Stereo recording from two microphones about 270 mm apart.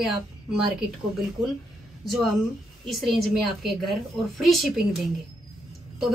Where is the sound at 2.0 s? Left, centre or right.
Centre.